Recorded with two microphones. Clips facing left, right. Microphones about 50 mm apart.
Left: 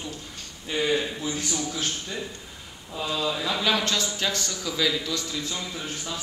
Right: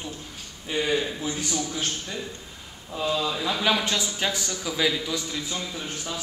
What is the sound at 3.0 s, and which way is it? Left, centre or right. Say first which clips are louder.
Speech: right 1 dB; centre.